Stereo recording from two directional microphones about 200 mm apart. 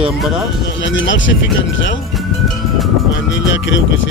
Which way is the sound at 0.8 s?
70° left (ahead or behind).